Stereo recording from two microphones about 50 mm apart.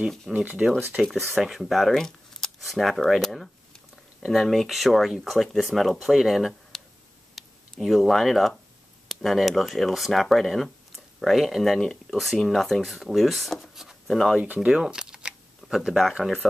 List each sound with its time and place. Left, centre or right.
0.3 s speech: centre
7.4 s a sound: centre
7.8 s speech: centre
14.4 s speech: right
14.7 s camera: centre